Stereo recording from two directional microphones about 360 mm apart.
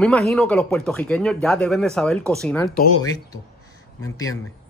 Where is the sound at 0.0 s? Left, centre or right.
Centre.